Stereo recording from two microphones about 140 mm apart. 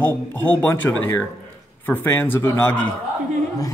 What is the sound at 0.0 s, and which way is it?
A man's voice, 15° left (ahead or behind).